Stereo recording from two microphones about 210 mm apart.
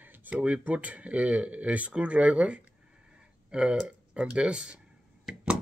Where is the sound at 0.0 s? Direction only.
10° right (ahead or behind).